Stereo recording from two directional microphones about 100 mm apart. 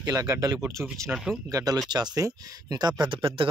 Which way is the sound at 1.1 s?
5° right (ahead or behind).